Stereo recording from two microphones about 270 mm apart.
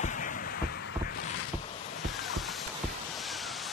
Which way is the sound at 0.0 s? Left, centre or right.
Left.